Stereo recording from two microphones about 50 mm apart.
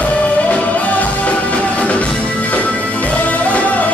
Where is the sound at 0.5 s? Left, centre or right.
Left.